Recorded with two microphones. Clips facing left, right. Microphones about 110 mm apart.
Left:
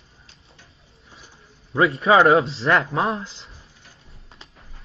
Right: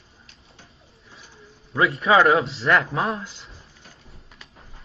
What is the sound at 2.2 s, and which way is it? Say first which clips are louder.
Speech: left 2 dB; 30° left (ahead or behind).